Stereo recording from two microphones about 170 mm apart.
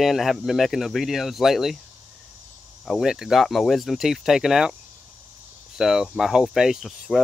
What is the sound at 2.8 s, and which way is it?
Speech, centre (ahead or behind).